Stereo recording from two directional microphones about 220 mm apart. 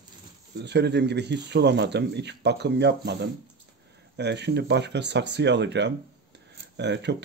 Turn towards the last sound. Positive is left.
turn(degrees=-50)  # may be behind; listen again after turning